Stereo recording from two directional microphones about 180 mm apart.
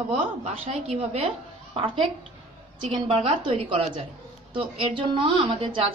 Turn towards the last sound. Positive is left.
turn(degrees=-30)  # may be behind; listen again after turning